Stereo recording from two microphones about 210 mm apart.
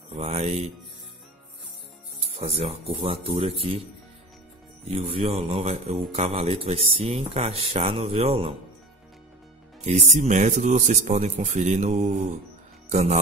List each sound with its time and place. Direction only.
0.1 s speech: 30° right (ahead or behind)
2.3 s speech: 30° right (ahead or behind)
4.8 s speech: 30° right (ahead or behind)
10.1 s speech: 35° right (ahead or behind)